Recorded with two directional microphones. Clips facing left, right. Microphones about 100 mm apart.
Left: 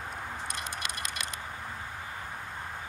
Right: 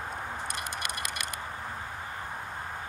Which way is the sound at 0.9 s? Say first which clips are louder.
Right 2 dB; 60° right (ahead or behind).